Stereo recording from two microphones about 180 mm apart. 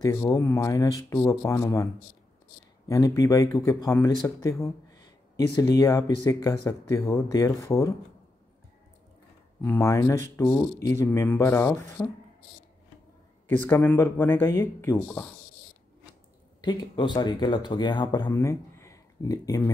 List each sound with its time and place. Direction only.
0.0 s speech: 15° left (ahead or behind)
2.9 s speech: 15° left (ahead or behind)
9.6 s speech: 15° left (ahead or behind)
13.5 s speech: 10° left (ahead or behind)
16.6 s speech: 25° left (ahead or behind)